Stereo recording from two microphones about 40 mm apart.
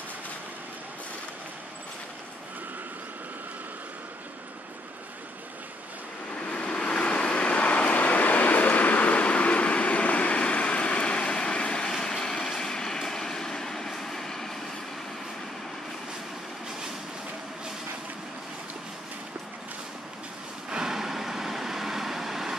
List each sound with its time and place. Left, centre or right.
6.5 s vehicle: left; by 14.6 s centre
20.7 s vehicle: centre